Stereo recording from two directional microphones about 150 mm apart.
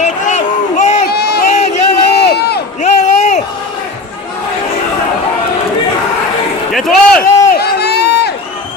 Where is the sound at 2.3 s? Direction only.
90° left.